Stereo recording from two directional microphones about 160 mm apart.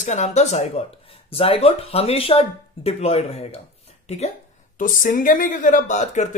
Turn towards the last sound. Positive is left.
turn(degrees=50)  # may be behind; listen again after turning